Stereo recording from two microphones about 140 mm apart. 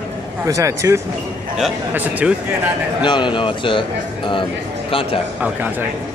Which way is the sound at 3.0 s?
35° left (ahead or behind).